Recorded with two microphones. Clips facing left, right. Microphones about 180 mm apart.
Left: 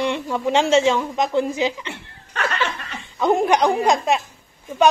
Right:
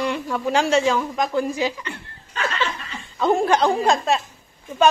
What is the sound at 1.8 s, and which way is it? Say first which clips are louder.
Laughter: even; 75° left (ahead or behind).